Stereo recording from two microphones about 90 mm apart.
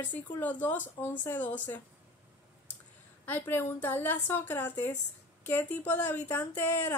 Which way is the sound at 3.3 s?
25° left (ahead or behind).